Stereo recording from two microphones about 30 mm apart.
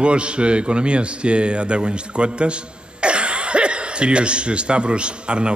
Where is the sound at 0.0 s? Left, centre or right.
Right.